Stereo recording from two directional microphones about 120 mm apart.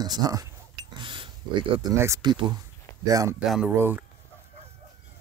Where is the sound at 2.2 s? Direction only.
40° right (ahead or behind).